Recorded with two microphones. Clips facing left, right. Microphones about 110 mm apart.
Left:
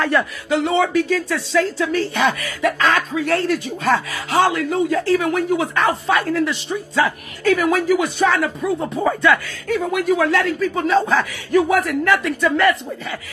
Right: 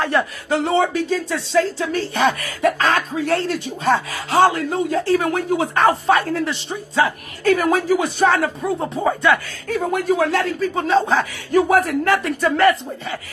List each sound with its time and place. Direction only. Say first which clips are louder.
0.1 s speech: right 1 dB; 25° right (ahead or behind)
0.5 s speech: left 1 dB; 35° right (ahead or behind)
9.0 s speech: left 1 dB; 25° right (ahead or behind)
9.7 s speech: left 1 dB; 35° right (ahead or behind)
11.7 s speech: right 1 dB; 40° right (ahead or behind)